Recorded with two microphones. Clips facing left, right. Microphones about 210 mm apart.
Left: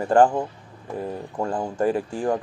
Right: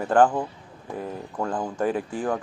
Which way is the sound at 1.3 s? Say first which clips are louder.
Left 1 dB; 10° left (ahead or behind).